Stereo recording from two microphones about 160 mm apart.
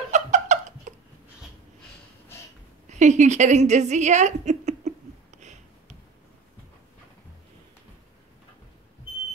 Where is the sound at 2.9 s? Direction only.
45° right (ahead or behind).